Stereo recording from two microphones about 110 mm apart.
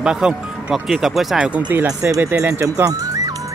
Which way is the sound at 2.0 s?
25° right (ahead or behind).